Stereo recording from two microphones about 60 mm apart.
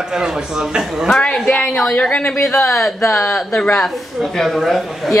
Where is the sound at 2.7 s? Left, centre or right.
Centre.